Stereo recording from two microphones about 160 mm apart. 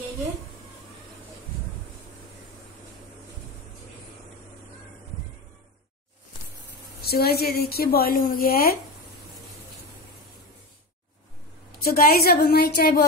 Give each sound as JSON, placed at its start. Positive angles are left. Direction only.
{"t": 7.0, "sound": "speech", "side_deg": 75}
{"t": 11.8, "sound": "speech", "side_deg": 70}